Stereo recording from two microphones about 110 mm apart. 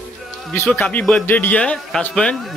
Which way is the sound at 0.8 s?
10° left (ahead or behind).